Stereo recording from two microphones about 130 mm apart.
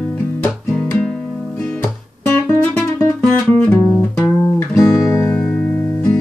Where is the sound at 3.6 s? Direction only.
10° left (ahead or behind).